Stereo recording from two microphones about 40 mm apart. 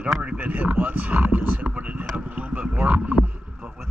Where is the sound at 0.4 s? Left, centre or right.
Right.